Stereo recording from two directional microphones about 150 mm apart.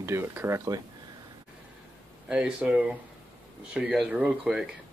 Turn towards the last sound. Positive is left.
turn(degrees=-5)  # may be behind; listen again after turning